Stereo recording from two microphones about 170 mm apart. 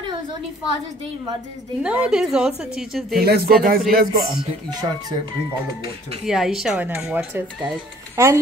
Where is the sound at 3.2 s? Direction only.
65° right (ahead or behind).